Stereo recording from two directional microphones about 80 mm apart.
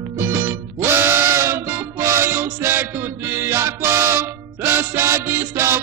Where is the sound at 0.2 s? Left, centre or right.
Right.